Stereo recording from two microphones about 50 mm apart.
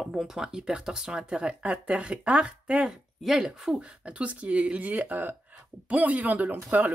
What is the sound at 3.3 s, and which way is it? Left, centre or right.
Speech, centre.